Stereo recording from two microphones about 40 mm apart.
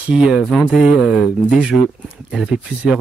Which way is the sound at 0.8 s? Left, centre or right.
Centre.